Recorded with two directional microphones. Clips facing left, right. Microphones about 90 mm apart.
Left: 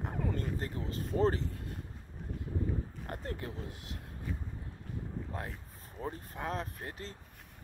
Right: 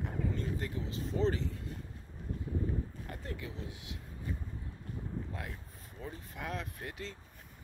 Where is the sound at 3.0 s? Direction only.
45° left (ahead or behind).